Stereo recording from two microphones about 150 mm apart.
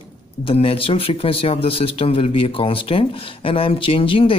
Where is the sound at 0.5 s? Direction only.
35° left (ahead or behind).